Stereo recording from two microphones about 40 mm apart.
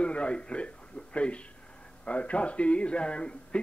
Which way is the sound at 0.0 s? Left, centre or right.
Left.